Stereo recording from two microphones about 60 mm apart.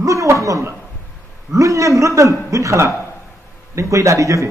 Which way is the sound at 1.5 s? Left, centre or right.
Right.